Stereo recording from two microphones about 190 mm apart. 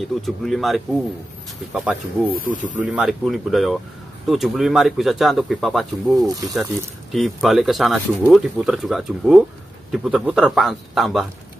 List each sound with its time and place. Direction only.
0.2 s speech: centre (ahead or behind)
2.5 s speech: 40° right (ahead or behind)
2.8 s speech: 5° right (ahead or behind)